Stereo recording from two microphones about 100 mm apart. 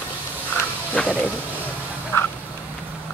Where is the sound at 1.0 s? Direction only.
10° left (ahead or behind).